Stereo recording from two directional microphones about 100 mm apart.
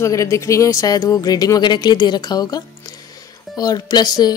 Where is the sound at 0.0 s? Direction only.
30° left (ahead or behind).